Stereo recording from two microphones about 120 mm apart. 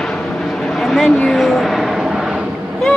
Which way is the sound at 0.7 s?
Centre (ahead or behind).